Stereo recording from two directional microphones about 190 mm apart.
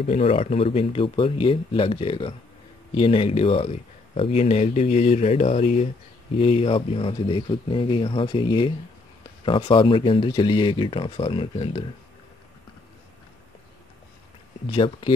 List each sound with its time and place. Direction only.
0.0 s speech: 30° left (ahead or behind)
14.7 s speech: 25° left (ahead or behind)